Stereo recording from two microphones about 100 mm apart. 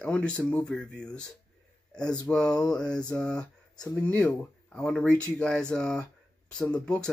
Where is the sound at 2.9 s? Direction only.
40° left (ahead or behind).